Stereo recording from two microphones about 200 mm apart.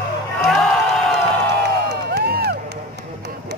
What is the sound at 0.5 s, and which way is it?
Music, centre (ahead or behind).